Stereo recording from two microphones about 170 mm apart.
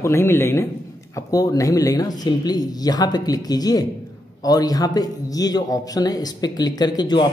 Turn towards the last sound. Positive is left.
turn(degrees=25)  # may be behind; listen again after turning